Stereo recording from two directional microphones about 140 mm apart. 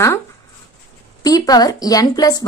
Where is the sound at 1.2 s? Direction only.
25° left (ahead or behind).